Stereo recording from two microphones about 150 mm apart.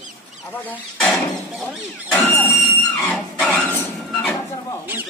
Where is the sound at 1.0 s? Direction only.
5° left (ahead or behind).